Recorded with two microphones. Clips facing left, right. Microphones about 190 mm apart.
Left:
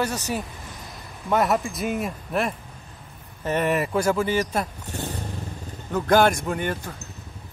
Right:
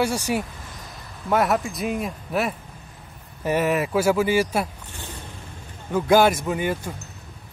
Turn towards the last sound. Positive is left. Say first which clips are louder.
# right 2 dB
turn(degrees=-10)  # may be behind; listen again after turning